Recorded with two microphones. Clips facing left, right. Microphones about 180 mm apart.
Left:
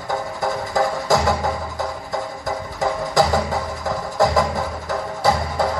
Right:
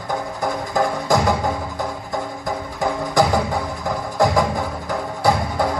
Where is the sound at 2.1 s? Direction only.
20° left (ahead or behind).